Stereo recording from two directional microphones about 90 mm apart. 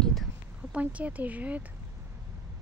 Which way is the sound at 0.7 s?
15° right (ahead or behind).